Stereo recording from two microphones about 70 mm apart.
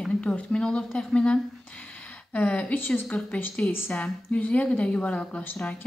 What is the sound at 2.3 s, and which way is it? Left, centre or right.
A woman's voice, left.